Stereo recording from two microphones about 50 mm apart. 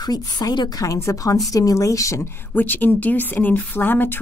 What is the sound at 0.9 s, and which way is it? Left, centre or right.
Speech, left.